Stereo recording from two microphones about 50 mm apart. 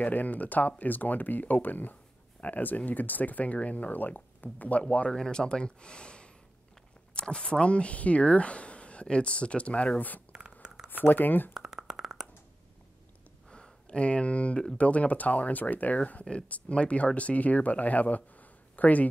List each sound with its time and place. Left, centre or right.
0.0 s speech: left
5.1 s speech: centre; by 10.2 s left
10.3 s writing: centre
10.9 s speech: left
11.5 s a sound: centre
13.5 s a sound: centre
14.8 s speech: left